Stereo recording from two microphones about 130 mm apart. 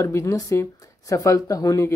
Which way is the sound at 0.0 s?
25° left (ahead or behind).